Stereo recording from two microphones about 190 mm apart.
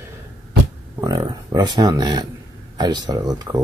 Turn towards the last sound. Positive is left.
turn(degrees=-20)  # may be behind; listen again after turning